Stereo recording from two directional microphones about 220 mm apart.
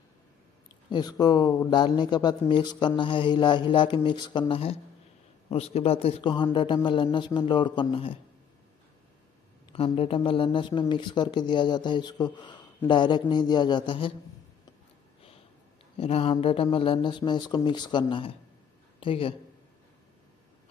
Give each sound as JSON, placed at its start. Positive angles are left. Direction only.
{"t": 0.8, "sound": "speech", "side_deg": 20}
{"t": 9.7, "sound": "speech", "side_deg": 25}
{"t": 16.0, "sound": "a man's voice", "side_deg": 25}